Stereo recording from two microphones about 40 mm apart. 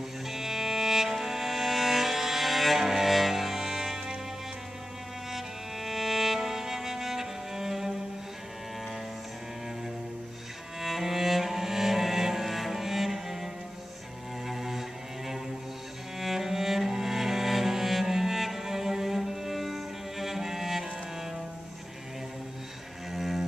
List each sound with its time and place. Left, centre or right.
0.3 s music: centre
5.3 s music: centre
10.8 s cello: centre
14.5 s cello: centre
16.2 s music: centre
23.1 s music: centre